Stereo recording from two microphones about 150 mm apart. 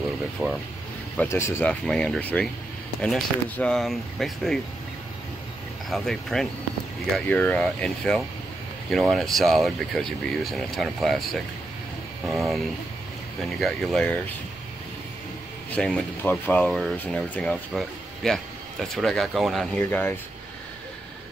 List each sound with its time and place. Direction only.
0.4 s speech: centre (ahead or behind)
1.1 s speech: 15° left (ahead or behind)
1.7 s speech: 5° left (ahead or behind)
5.9 s speech: centre (ahead or behind)
12.3 s speech: centre (ahead or behind)
15.7 s speech: 5° left (ahead or behind)
19.8 s speech: 15° left (ahead or behind)